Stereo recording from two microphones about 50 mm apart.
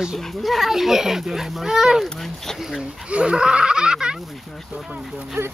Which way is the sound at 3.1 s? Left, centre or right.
Right.